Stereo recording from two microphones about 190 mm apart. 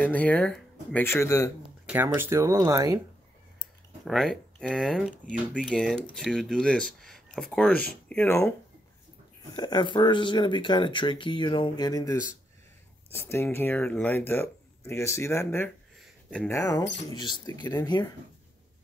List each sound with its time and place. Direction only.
0.0 s speech: 5° left (ahead or behind)
1.9 s speech: 10° right (ahead or behind)
4.0 s speech: centre (ahead or behind)
9.6 s speech: 25° left (ahead or behind)
16.0 s a sound: 5° left (ahead or behind)
17.1 s speech: 20° left (ahead or behind)